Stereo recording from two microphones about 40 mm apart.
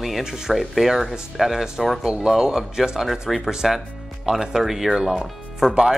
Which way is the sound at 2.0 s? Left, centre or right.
Right.